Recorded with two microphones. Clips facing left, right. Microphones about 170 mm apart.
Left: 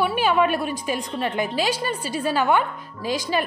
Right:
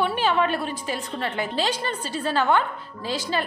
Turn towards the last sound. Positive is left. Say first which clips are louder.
# left 3 dB
turn(degrees=15)  # may be behind; listen again after turning